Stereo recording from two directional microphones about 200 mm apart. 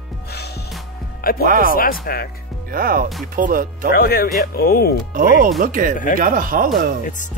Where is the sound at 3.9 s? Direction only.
50° left (ahead or behind).